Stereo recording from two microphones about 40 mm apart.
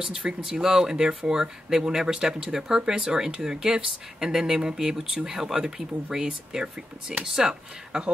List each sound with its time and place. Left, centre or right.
0.0 s speech: centre